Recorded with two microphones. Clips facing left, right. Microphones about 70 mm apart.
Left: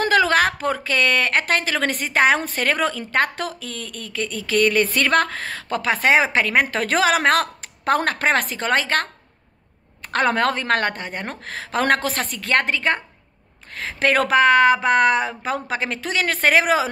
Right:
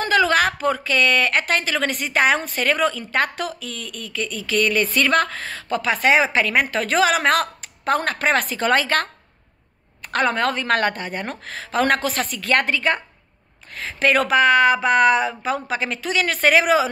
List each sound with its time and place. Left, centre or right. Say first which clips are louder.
0.0 s a woman's voice: left 1 dB; left
10.2 s a woman's voice: left 1 dB; left
11.4 s a woman's voice: even; left
12.4 s a woman's voice: even; left
13.7 s a woman's voice: even; left